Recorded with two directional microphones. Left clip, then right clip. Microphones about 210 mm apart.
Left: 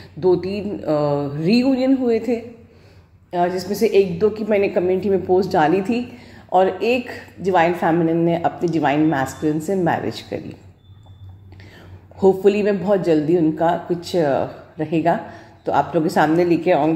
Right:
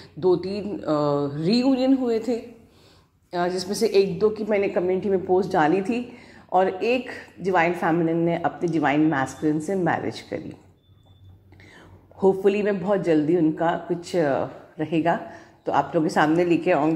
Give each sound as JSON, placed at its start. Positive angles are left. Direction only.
{"t": 0.2, "sound": "a woman's voice", "side_deg": -10}
{"t": 12.4, "sound": "a woman's voice", "side_deg": -5}